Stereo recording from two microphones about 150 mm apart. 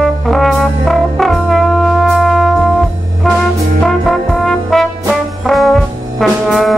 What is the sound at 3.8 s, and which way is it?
Trombone, centre (ahead or behind).